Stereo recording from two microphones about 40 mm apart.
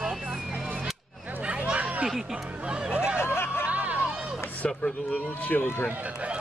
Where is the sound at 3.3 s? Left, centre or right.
Left.